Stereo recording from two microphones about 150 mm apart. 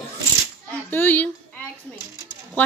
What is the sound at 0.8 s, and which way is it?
Speech, 15° left (ahead or behind).